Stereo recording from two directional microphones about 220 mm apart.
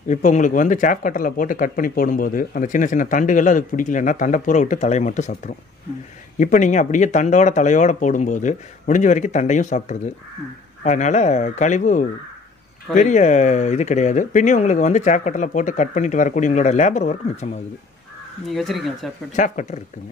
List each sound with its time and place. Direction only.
0.1 s speech: 35° left (ahead or behind)
18.5 s speech: centre (ahead or behind)
19.3 s speech: 35° left (ahead or behind)